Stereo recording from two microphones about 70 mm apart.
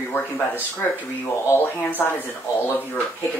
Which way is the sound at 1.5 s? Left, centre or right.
Left.